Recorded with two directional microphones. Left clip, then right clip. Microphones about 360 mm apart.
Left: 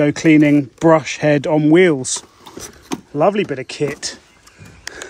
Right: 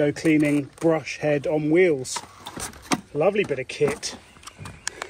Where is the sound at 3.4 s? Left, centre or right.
Left.